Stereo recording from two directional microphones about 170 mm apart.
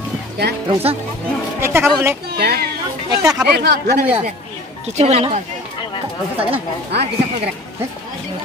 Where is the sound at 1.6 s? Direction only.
15° right (ahead or behind).